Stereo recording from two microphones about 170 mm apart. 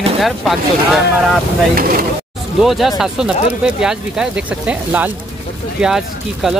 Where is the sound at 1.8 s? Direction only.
60° right (ahead or behind).